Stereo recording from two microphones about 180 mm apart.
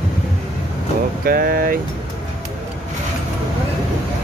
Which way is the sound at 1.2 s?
55° right (ahead or behind).